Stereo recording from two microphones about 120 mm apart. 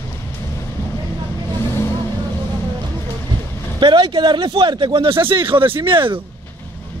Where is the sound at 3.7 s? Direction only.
40° right (ahead or behind).